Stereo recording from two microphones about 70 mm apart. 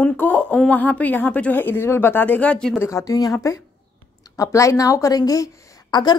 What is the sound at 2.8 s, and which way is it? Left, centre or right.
A woman's voice, left.